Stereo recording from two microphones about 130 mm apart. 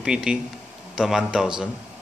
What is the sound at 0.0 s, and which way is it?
A man's voice, 5° right (ahead or behind).